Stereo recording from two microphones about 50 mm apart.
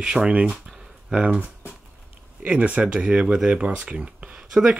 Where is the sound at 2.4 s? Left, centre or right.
Right.